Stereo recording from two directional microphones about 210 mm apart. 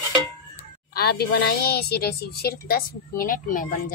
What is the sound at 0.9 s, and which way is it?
A woman's voice, 50° left (ahead or behind).